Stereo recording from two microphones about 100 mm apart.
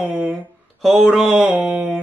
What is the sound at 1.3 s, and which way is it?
Speech, 10° right (ahead or behind).